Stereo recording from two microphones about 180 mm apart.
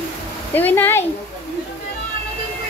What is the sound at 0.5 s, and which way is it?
Speech, 10° left (ahead or behind).